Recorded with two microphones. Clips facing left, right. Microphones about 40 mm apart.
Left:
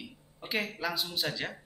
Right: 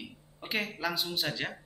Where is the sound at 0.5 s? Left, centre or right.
Centre.